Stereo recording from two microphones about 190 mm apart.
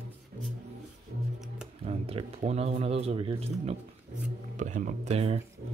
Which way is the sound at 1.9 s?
30° right (ahead or behind).